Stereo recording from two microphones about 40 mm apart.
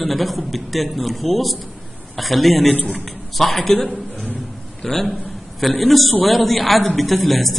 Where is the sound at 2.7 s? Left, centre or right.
Left.